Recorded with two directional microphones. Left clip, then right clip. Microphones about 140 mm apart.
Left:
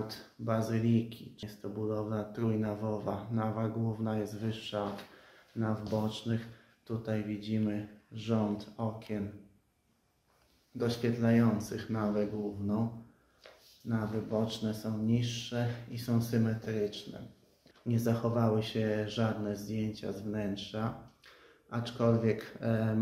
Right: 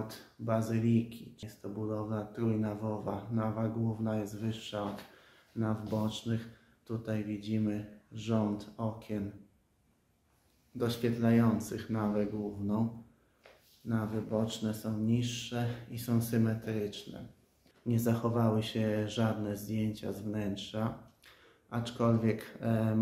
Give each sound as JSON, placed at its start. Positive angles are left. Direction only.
{"t": 0.0, "sound": "speech", "side_deg": -5}
{"t": 10.8, "sound": "speech", "side_deg": -30}
{"t": 13.8, "sound": "speech", "side_deg": -25}